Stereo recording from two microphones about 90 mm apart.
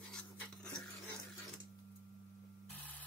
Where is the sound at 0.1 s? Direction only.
5° left (ahead or behind).